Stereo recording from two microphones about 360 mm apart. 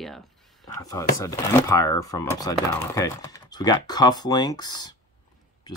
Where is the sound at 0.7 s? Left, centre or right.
Centre.